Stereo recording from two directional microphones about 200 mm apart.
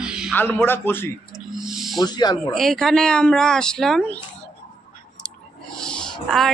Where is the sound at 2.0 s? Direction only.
20° left (ahead or behind).